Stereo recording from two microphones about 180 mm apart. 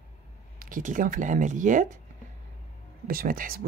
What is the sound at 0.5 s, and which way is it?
Speech, 50° right (ahead or behind).